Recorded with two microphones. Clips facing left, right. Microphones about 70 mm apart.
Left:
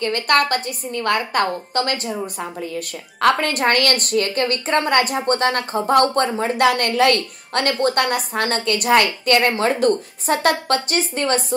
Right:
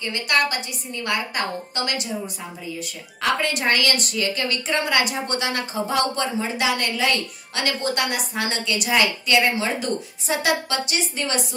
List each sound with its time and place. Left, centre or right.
0.0 s a woman's voice: left